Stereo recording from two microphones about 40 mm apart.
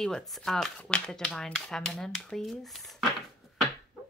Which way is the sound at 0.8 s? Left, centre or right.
Left.